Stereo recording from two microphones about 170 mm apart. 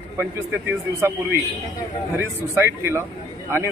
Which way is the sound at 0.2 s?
10° right (ahead or behind).